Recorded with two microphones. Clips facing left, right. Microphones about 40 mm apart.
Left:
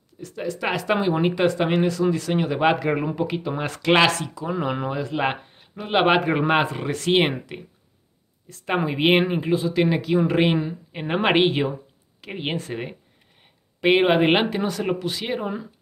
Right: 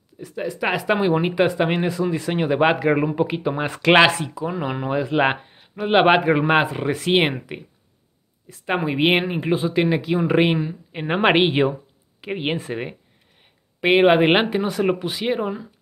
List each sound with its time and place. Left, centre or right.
0.2 s speech: centre
4.5 s speech: centre
4.8 s speech: right
5.2 s a sound: centre
5.9 s speech: centre
9.4 s speech: right
9.8 s speech: centre